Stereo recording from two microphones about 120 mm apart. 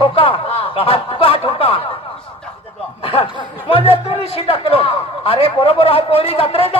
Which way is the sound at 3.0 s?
50° left (ahead or behind).